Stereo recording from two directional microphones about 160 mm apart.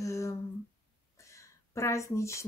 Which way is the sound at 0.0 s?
20° left (ahead or behind).